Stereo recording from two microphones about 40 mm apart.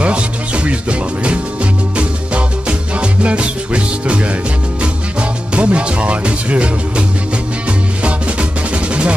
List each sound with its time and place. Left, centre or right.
0.7 s music: right
3.0 s music: right
5.5 s music: right